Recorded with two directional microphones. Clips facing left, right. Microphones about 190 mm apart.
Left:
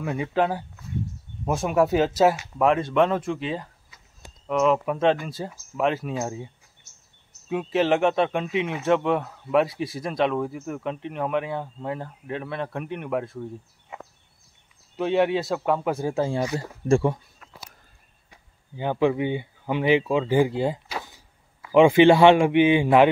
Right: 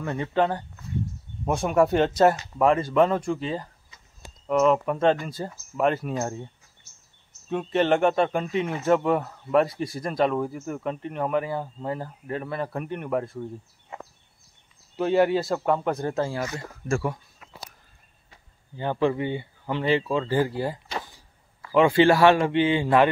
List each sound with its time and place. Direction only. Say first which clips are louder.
0.0 s a man's voice: even; 5° left (ahead or behind)
15.0 s a man's voice: right 1 dB; centre (ahead or behind); by 16.5 s 15° left (ahead or behind)
16.5 s speech: left 7 dB; 30° left (ahead or behind)
17.4 s walk: right 1 dB; 5° right (ahead or behind)
18.3 s a man's voice: left 2 dB; 15° left (ahead or behind)